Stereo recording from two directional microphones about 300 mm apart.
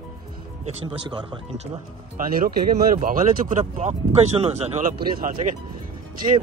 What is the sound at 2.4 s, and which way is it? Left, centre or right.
A man's voice, right.